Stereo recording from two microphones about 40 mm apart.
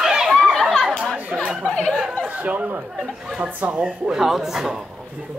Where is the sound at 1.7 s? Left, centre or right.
Left.